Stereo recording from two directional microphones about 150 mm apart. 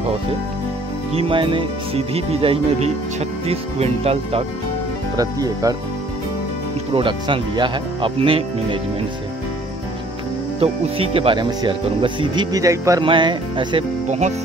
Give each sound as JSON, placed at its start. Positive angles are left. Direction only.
{"t": 1.1, "sound": "speech", "side_deg": -35}
{"t": 5.1, "sound": "speech", "side_deg": -25}
{"t": 6.9, "sound": "speech", "side_deg": -35}
{"t": 10.6, "sound": "speech", "side_deg": -40}
{"t": 13.0, "sound": "speech", "side_deg": -35}
{"t": 14.0, "sound": "music", "side_deg": -50}